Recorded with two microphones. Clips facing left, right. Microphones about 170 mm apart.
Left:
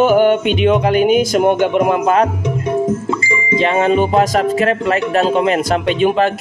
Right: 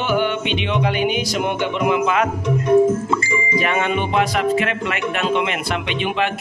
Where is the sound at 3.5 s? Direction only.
30° left (ahead or behind).